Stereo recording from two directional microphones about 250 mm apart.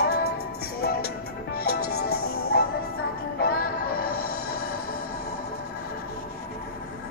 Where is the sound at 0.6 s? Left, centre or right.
Left.